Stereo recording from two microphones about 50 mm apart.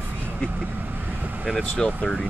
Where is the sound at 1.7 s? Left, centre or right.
Left.